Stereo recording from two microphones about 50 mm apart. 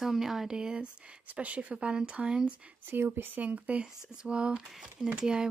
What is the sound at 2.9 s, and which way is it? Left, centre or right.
Speech, right.